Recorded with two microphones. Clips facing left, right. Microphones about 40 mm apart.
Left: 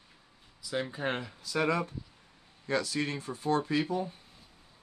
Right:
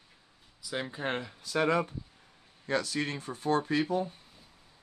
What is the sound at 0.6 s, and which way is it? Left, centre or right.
Speech, centre.